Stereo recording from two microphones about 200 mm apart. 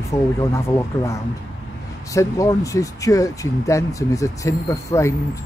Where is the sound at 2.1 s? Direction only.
15° left (ahead or behind).